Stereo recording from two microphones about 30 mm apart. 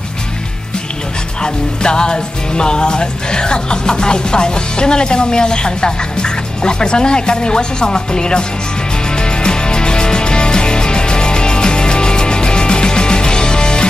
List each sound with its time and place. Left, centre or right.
1.4 s music: left